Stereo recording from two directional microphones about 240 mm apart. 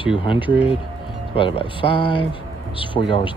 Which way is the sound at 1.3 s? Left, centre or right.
Left.